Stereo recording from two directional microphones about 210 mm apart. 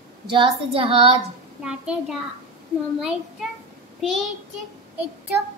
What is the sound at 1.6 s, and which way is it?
Child singing, 5° right (ahead or behind).